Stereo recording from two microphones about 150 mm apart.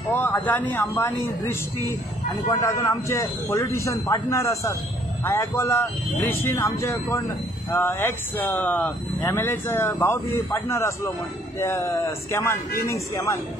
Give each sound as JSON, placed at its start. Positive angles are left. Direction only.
{"t": 0.1, "sound": "speech", "side_deg": 15}